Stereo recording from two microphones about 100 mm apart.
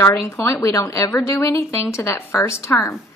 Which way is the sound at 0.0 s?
30° left (ahead or behind).